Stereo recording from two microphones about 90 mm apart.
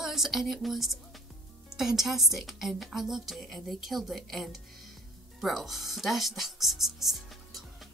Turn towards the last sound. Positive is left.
turn(degrees=0)  # may be behind; listen again after turning